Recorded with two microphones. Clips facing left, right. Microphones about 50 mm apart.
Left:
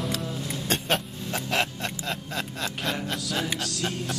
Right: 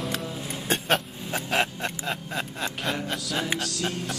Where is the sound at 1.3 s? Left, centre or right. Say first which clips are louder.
Right 1 dB; centre.